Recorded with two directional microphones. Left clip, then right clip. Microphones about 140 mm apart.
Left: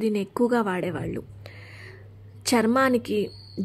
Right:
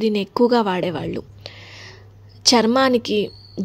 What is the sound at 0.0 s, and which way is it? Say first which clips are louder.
A woman's voice: right 6 dB; 30° right (ahead or behind).